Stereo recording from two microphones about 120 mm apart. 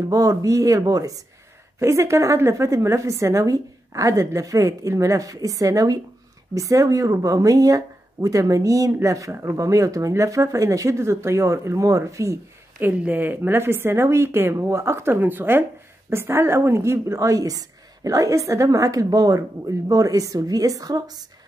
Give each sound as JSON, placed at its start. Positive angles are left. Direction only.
{"t": 0.1, "sound": "speech", "side_deg": -30}
{"t": 12.7, "sound": "speech", "side_deg": -15}